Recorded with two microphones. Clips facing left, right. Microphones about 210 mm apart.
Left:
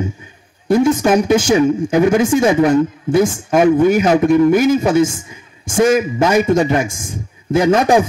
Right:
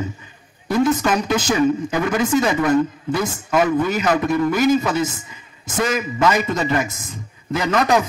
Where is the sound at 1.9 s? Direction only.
25° left (ahead or behind).